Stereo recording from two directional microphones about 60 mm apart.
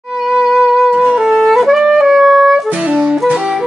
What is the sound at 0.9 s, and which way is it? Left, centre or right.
Music, centre.